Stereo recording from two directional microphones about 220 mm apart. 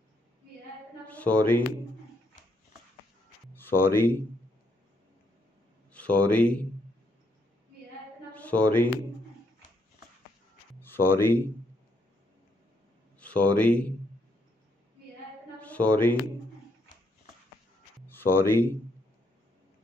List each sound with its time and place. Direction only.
1.0 s speech: 5° left (ahead or behind)
3.5 s speech: 10° left (ahead or behind)
5.9 s speech: 5° left (ahead or behind)
8.3 s speech: 5° left (ahead or behind)
10.8 s speech: 10° left (ahead or behind)
13.2 s speech: 5° left (ahead or behind)
15.6 s speech: 5° left (ahead or behind)
18.0 s speech: 10° left (ahead or behind)